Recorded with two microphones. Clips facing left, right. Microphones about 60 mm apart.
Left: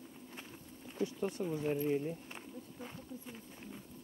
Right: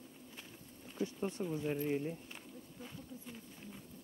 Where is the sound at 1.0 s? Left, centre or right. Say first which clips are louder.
Left 2 dB; left.